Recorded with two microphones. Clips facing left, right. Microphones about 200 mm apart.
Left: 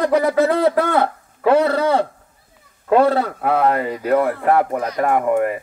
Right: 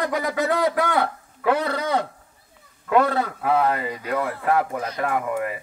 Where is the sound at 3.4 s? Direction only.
55° left (ahead or behind).